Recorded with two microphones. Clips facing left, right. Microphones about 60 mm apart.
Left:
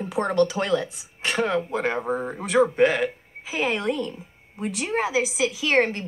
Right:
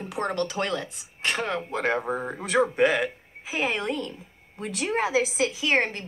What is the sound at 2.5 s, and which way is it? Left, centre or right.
Speech, centre.